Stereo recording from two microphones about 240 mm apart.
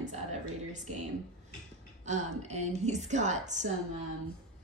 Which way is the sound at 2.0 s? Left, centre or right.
Right.